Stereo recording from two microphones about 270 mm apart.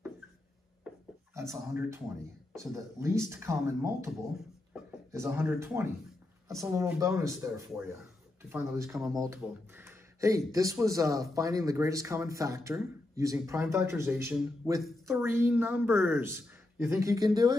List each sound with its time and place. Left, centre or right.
1.3 s speech: centre
5.1 s speech: centre